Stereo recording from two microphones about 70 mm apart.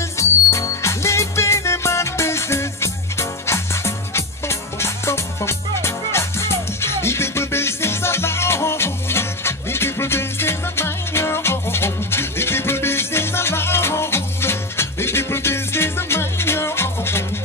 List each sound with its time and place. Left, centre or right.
0.2 s music: left